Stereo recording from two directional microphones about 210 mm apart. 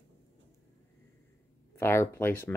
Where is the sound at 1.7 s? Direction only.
10° left (ahead or behind).